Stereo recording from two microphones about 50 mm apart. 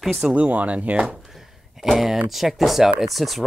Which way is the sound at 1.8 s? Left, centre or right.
Centre.